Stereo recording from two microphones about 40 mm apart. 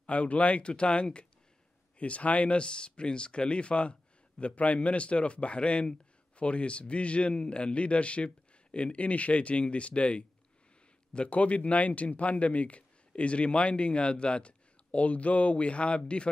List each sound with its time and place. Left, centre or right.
0.0 s a man's voice: left